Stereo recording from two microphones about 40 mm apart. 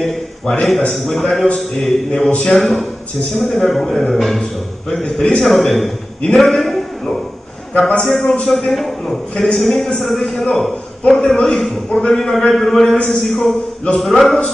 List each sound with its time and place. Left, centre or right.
0.0 s a man's voice: centre
8.0 s a man's voice: centre
11.9 s a man's voice: left
12.2 s a man's voice: centre